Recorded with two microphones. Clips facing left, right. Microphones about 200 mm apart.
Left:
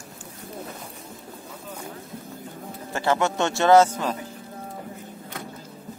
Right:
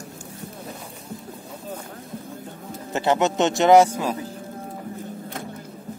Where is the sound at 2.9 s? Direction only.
20° right (ahead or behind).